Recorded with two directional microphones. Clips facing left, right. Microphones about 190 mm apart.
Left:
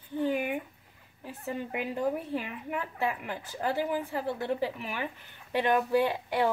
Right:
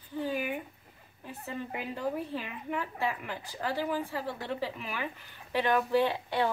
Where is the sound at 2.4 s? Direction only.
20° left (ahead or behind).